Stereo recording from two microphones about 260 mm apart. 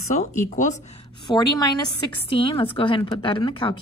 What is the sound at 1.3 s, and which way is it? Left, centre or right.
A woman's voice, centre.